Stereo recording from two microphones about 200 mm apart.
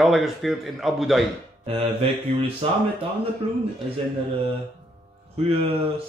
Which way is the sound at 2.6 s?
30° right (ahead or behind).